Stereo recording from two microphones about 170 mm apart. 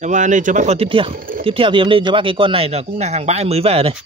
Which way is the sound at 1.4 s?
30° right (ahead or behind).